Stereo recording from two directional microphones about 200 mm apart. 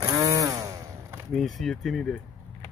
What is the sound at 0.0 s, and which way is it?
Chainsaw, 20° right (ahead or behind).